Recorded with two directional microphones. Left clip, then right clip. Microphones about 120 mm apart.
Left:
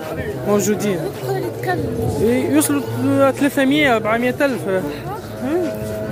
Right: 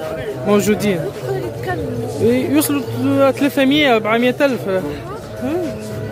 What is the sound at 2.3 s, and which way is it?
Speech, 40° right (ahead or behind).